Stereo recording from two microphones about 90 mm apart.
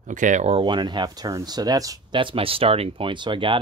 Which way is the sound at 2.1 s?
70° right (ahead or behind).